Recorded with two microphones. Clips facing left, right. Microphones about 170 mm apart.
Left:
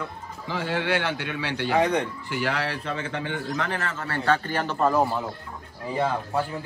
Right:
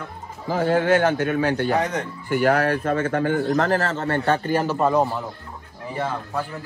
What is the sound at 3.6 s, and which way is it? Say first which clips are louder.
Speech: right 8 dB; 40° right (ahead or behind).